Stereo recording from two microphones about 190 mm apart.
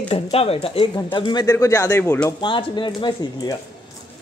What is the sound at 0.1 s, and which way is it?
Speech, 30° left (ahead or behind).